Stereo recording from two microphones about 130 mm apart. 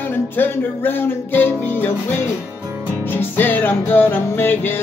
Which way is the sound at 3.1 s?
15° left (ahead or behind).